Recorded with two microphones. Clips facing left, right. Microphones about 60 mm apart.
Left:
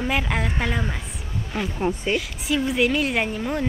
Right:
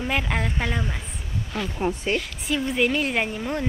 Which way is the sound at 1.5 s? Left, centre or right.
Centre.